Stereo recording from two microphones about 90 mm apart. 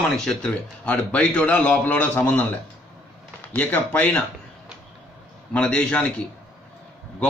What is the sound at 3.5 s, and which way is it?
Speech, 20° left (ahead or behind).